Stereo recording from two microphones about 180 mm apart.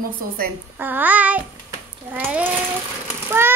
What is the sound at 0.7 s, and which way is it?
Babbling, 10° right (ahead or behind).